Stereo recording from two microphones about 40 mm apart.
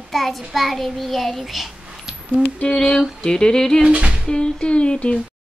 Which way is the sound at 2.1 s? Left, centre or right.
Centre.